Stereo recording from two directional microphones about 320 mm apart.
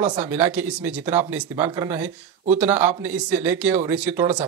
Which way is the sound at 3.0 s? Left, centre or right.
Centre.